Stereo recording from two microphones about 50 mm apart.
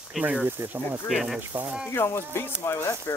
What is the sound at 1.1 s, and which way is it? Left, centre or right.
Speech, centre.